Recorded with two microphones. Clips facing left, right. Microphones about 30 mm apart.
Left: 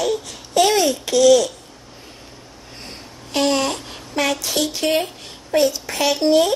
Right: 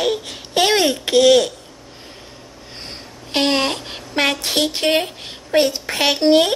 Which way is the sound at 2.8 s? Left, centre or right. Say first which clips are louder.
Right 2 dB; right.